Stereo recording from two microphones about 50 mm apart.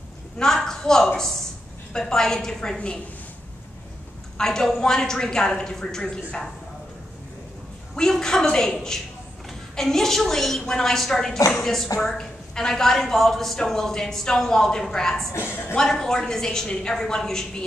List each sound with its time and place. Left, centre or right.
0.7 s a woman's voice: centre
4.4 s a woman's voice: centre
7.9 s a woman's voice: centre
15.3 s a woman's voice: left
15.8 s a woman's voice: centre